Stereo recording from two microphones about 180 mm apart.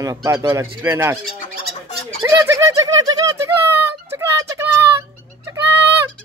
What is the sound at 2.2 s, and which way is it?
Bird, 15° right (ahead or behind).